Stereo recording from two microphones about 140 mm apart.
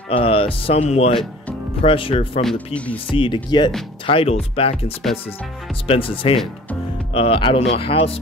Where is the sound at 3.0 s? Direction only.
35° left (ahead or behind).